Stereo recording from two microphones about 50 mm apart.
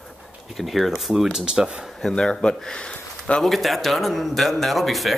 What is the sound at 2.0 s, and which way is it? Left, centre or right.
Speech, centre.